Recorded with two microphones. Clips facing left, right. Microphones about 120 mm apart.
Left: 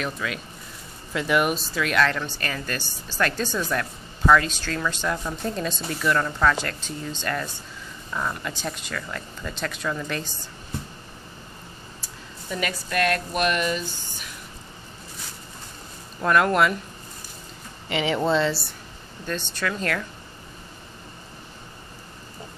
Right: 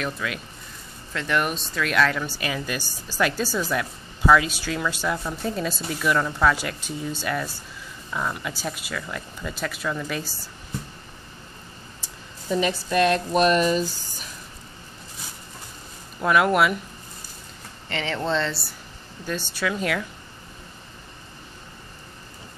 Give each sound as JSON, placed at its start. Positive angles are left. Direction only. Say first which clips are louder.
{"t": 0.0, "sound": "speech", "louder": "even", "side_deg": 0}
{"t": 12.4, "sound": "a woman's voice", "louder": "right 6 dB", "side_deg": -25}
{"t": 13.3, "sound": "speech", "louder": "right 5 dB", "side_deg": -35}
{"t": 16.2, "sound": "speech", "louder": "even", "side_deg": -5}
{"t": 17.8, "sound": "speech", "louder": "left 4 dB", "side_deg": 10}